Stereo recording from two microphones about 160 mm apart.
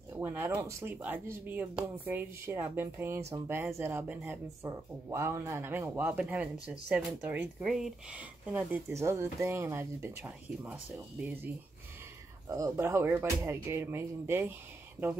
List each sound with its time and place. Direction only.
0.1 s speech: 15° right (ahead or behind)